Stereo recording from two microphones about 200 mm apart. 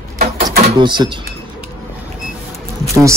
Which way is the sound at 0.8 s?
20° right (ahead or behind).